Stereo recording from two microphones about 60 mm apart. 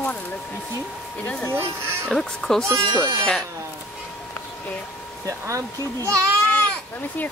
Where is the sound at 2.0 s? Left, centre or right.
Centre.